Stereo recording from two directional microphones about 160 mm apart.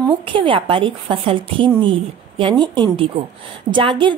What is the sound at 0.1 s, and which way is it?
A woman's voice, 35° right (ahead or behind).